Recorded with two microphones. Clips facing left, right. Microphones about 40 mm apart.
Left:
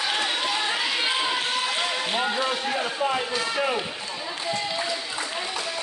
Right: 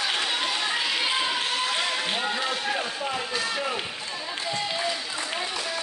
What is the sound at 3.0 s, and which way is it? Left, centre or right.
Speech, left.